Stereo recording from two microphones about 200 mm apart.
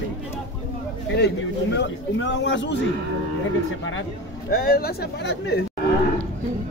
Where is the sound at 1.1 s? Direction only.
60° left (ahead or behind).